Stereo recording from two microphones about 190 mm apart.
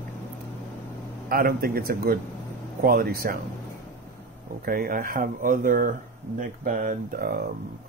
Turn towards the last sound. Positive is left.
turn(degrees=-50)  # may be behind; listen again after turning